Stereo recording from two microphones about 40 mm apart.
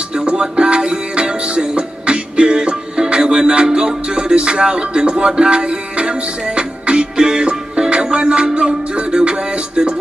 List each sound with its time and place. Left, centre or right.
0.1 s music: right